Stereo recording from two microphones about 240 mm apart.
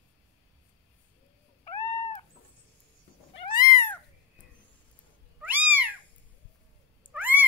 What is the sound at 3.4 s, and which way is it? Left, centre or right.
Cat, centre.